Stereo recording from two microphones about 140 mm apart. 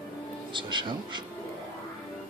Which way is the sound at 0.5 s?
35° right (ahead or behind).